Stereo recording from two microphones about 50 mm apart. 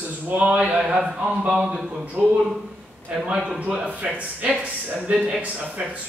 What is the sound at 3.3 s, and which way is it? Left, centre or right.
Speech, centre.